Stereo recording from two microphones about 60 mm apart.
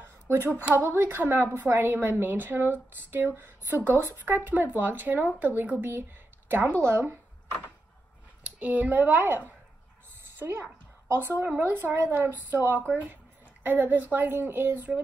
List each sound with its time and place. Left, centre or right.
0.0 s a sound: right
0.8 s a woman's voice: right
6.7 s speech: right
8.5 s speech: right
10.4 s a woman's voice: right